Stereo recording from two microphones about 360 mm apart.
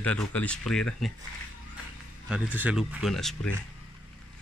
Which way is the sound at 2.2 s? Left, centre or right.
Centre.